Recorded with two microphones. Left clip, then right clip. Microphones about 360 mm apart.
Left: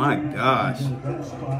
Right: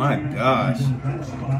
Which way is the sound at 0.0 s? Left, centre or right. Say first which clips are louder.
Even; centre.